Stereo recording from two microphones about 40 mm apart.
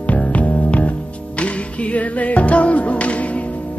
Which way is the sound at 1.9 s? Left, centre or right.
Left.